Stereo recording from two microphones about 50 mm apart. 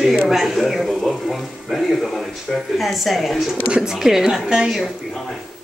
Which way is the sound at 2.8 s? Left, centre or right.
Centre.